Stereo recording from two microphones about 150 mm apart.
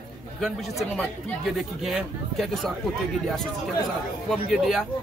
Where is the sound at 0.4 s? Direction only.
Centre (ahead or behind).